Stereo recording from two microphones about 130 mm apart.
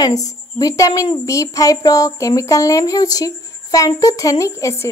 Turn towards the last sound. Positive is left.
turn(degrees=20)  # may be behind; listen again after turning